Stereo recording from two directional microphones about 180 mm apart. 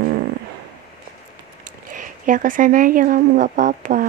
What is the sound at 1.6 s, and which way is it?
Speech, 45° right (ahead or behind).